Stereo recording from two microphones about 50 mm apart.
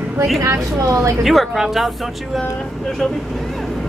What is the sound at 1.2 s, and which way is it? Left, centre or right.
Speech, centre.